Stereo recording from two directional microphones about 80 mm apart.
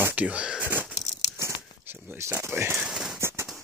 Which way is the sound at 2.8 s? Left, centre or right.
Centre.